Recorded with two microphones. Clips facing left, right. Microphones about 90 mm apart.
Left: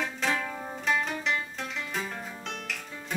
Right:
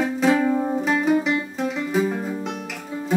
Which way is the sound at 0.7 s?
10° right (ahead or behind).